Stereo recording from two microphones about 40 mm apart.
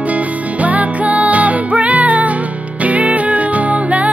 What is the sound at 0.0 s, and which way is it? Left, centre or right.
Music, right.